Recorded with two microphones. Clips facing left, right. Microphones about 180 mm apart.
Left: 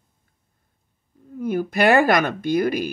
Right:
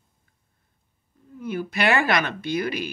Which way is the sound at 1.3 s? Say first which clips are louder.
Left 6 dB; 50° left (ahead or behind).